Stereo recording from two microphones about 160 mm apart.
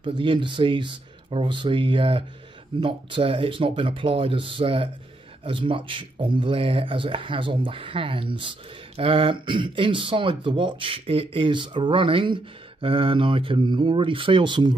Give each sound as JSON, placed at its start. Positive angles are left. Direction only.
{"t": 0.0, "sound": "speech", "side_deg": -30}